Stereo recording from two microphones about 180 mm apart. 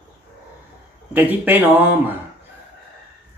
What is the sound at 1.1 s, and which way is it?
Speech, 10° right (ahead or behind).